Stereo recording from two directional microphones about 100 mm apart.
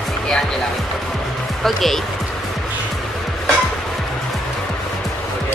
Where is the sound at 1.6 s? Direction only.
Centre (ahead or behind).